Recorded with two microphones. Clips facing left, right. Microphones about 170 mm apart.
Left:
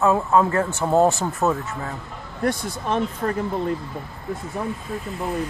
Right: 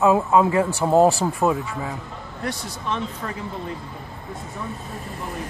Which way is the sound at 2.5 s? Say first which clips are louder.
Left 5 dB; 50° left (ahead or behind).